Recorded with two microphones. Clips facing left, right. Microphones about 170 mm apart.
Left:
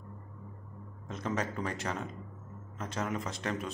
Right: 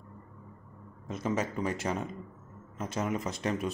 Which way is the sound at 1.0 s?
10° right (ahead or behind).